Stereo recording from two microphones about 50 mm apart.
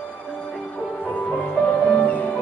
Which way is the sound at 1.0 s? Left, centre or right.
Left.